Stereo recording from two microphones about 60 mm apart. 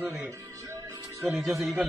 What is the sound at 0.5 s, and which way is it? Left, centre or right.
Music, right.